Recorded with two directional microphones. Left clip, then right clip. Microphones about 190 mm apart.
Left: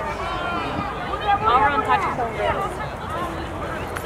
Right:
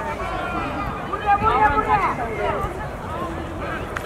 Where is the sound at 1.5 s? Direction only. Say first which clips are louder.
Left 3 dB; 25° left (ahead or behind).